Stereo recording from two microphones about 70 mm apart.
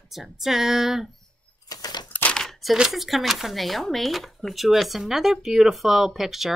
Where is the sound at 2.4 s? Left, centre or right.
Centre.